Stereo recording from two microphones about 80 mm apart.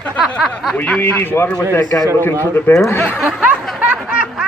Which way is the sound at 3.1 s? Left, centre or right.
Centre.